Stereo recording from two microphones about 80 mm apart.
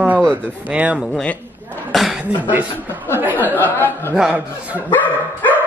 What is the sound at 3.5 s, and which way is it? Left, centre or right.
Speech, left.